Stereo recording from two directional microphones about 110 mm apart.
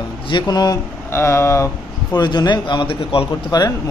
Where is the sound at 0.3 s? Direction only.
40° left (ahead or behind).